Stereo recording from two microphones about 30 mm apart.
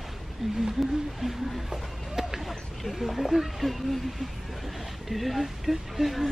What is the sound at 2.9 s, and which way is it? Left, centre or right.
Speech, centre.